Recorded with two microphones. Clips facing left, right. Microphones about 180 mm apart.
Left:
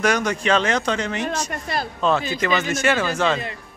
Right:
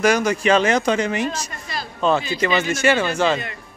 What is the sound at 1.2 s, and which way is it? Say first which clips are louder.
Speech: even; 55° left (ahead or behind).